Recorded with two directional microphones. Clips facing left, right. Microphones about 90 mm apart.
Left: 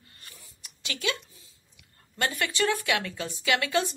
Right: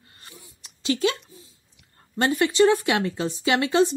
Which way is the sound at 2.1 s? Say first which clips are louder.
Right 9 dB; 25° right (ahead or behind).